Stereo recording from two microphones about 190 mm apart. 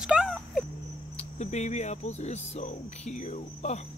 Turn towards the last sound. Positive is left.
turn(degrees=35)  # may be behind; listen again after turning